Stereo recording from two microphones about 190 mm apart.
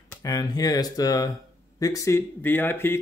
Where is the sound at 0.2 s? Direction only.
20° left (ahead or behind).